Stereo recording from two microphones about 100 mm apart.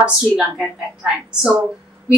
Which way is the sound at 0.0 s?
5° right (ahead or behind).